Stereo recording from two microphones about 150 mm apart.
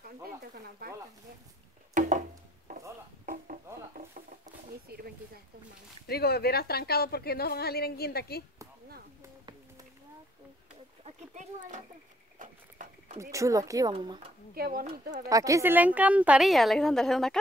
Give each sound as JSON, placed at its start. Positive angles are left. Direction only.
{"t": 0.8, "sound": "speech", "side_deg": -90}
{"t": 2.0, "sound": "a sound", "side_deg": -55}
{"t": 3.9, "sound": "a sound", "side_deg": -65}
{"t": 4.8, "sound": "speech", "side_deg": -90}
{"t": 6.0, "sound": "a woman's voice", "side_deg": 90}
{"t": 11.1, "sound": "speech", "side_deg": -50}
{"t": 12.4, "sound": "a sound", "side_deg": -60}
{"t": 13.2, "sound": "speech", "side_deg": -20}
{"t": 14.5, "sound": "speech", "side_deg": -75}
{"t": 15.2, "sound": "a woman's voice", "side_deg": -20}